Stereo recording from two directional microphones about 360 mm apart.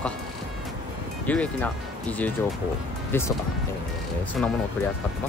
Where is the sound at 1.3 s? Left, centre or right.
Centre.